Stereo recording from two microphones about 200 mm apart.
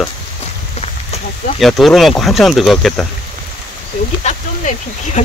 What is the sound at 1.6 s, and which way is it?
Speech, centre (ahead or behind).